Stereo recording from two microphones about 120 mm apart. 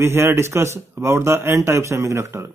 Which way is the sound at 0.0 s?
20° right (ahead or behind).